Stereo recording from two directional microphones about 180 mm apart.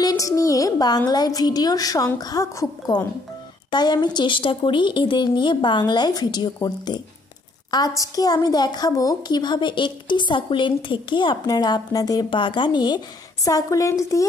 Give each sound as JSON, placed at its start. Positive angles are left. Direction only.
{"t": 0.0, "sound": "a woman's voice", "side_deg": 20}